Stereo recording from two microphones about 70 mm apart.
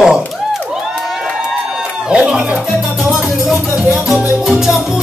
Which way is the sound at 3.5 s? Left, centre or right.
Centre.